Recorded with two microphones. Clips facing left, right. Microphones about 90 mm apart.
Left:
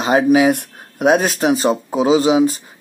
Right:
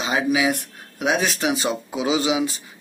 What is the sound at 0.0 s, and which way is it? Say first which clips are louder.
Speech: left 8 dB; 45° left (ahead or behind).